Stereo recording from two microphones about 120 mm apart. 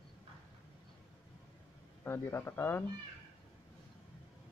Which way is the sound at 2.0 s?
20° left (ahead or behind).